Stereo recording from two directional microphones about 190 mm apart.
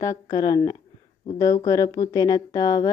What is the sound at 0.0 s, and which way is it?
A woman's voice, 20° left (ahead or behind).